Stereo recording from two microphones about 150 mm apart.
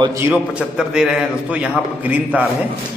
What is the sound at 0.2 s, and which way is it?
A man's voice, 10° right (ahead or behind).